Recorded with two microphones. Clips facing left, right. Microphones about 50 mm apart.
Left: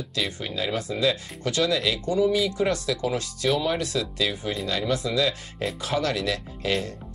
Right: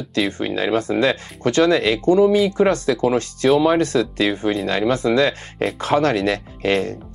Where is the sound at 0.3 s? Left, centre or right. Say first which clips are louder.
Right 9 dB; right.